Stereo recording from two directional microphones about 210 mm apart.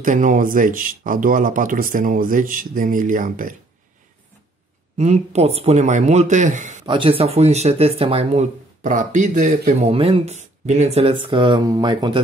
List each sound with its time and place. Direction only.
0.0 s speech: 40° right (ahead or behind)
4.9 s speech: 35° right (ahead or behind)
6.9 s speech: 25° right (ahead or behind)